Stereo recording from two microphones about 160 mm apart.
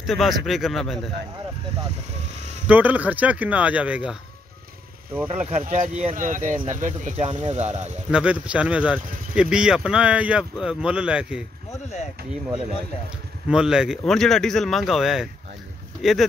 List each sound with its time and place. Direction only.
0.0 s speech: centre (ahead or behind)
2.6 s speech: 10° right (ahead or behind)
5.3 s speech: 40° right (ahead or behind)
8.1 s speech: 5° right (ahead or behind)
13.5 s speech: 5° right (ahead or behind)